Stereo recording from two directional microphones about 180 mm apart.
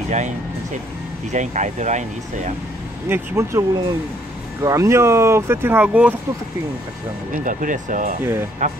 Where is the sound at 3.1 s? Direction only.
15° right (ahead or behind).